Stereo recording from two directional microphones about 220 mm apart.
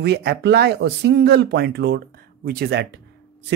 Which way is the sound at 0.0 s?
50° right (ahead or behind).